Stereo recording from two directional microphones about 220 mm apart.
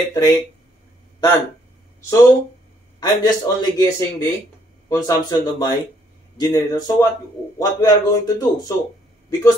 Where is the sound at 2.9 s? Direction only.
20° left (ahead or behind).